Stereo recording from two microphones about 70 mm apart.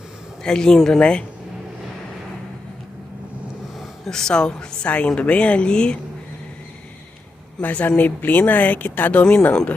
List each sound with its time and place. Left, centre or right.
0.4 s a man's voice: centre
4.0 s a woman's voice: centre
7.6 s speech: left